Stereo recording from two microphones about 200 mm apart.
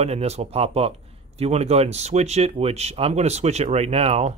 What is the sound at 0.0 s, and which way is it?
Speech, 30° right (ahead or behind).